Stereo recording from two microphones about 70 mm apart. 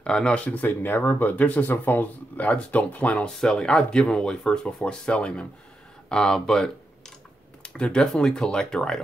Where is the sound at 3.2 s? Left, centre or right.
Centre.